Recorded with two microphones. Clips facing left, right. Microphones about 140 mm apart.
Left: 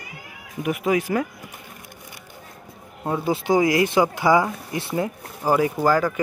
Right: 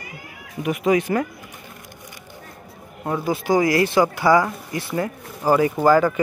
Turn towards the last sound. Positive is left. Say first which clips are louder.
# right 4 dB
turn(degrees=0)  # may be behind; listen again after turning